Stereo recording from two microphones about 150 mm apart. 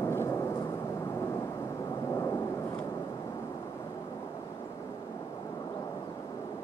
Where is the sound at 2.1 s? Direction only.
20° left (ahead or behind).